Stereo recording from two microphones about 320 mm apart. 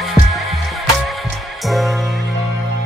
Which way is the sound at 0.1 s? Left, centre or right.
Centre.